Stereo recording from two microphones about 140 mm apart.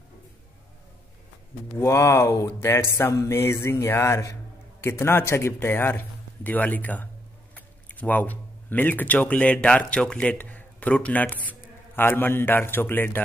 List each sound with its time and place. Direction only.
1.8 s a man's voice: 20° left (ahead or behind)